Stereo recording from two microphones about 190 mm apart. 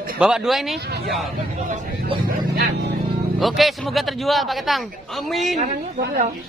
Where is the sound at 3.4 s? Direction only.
Centre (ahead or behind).